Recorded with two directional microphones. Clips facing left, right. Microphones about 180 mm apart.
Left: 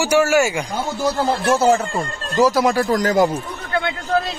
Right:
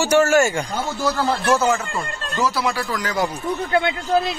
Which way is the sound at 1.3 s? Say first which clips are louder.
Left 4 dB; 35° left (ahead or behind).